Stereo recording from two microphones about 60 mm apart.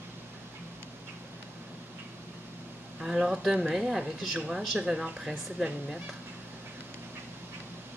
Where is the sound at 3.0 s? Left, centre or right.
Centre.